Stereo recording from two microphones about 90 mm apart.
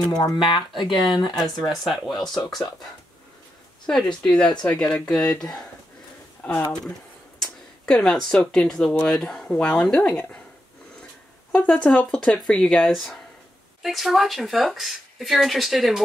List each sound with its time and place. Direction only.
0.1 s speech: 55° left (ahead or behind)
1.4 s speech: centre (ahead or behind)
3.8 s speech: 10° left (ahead or behind)
11.5 s speech: 15° left (ahead or behind); by 16.0 s centre (ahead or behind)